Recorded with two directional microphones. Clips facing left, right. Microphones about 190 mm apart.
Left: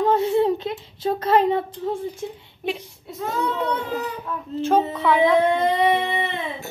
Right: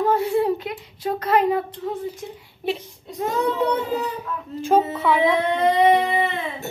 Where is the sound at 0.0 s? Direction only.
20° left (ahead or behind).